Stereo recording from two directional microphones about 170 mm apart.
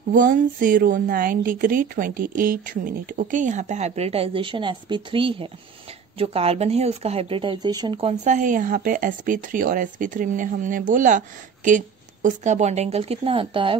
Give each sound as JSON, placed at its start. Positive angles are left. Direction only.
{"t": 0.1, "sound": "speech", "side_deg": -55}
{"t": 8.1, "sound": "speech", "side_deg": -45}